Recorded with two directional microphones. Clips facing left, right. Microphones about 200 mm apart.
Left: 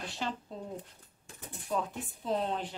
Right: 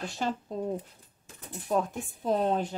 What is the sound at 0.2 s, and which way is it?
Speech, 45° right (ahead or behind).